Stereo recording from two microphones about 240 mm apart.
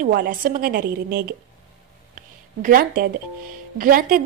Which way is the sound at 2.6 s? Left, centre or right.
Right.